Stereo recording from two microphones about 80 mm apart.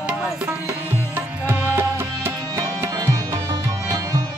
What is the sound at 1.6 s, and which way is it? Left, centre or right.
Music, right.